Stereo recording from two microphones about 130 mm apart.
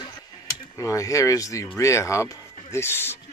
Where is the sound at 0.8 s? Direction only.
25° left (ahead or behind).